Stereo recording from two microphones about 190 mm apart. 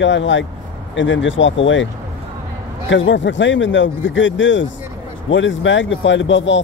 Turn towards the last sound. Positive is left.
turn(degrees=75)  # may be behind; listen again after turning